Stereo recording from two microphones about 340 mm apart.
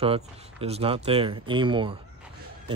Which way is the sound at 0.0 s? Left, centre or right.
Centre.